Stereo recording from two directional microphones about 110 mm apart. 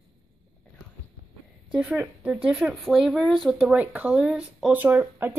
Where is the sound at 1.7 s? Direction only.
15° right (ahead or behind).